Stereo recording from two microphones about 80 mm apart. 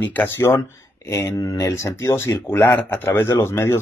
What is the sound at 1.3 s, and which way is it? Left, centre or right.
Speech, left.